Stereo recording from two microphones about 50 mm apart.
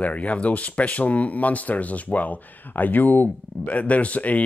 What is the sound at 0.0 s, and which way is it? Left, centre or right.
Speech, left.